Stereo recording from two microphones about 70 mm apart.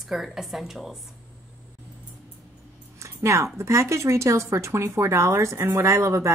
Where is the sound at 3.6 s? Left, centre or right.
Right.